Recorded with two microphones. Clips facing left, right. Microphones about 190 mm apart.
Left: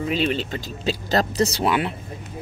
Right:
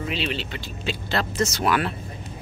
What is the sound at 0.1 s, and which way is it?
Speech, 45° left (ahead or behind).